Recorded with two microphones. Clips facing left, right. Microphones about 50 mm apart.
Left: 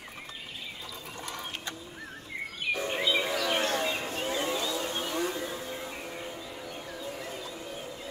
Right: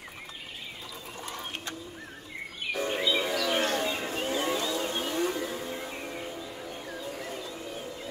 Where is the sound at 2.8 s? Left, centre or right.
Centre.